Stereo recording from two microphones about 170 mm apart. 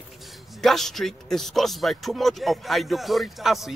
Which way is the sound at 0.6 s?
Centre (ahead or behind).